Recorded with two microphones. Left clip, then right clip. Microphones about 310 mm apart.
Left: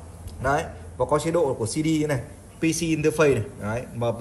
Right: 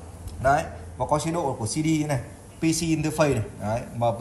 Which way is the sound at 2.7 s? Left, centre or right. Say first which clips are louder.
Even; right.